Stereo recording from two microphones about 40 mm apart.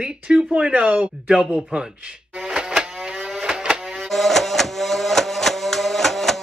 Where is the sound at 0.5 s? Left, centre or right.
Right.